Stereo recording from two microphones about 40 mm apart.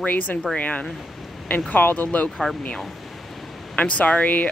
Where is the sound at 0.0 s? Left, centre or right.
Left.